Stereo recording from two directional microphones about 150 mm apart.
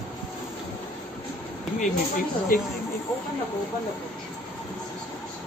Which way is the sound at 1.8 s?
65° left (ahead or behind).